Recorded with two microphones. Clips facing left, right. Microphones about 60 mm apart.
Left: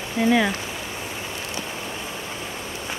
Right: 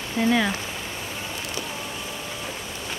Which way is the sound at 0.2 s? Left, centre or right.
Centre.